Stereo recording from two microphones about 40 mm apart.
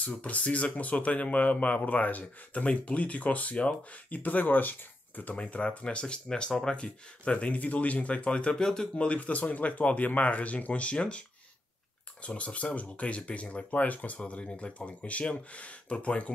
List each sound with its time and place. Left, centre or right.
0.0 s speech: left
5.3 s speech: left
9.2 s speech: left
12.4 s speech: left